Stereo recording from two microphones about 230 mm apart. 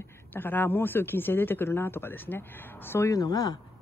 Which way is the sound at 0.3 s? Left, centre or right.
Centre.